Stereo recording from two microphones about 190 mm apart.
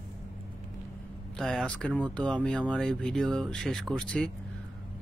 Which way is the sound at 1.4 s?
Centre (ahead or behind).